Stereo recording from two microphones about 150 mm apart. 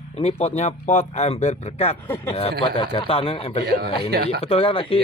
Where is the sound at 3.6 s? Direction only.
90° right.